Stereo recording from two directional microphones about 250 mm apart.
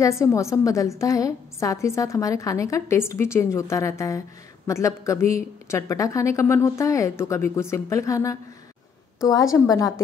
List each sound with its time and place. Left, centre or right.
0.0 s a woman's voice: centre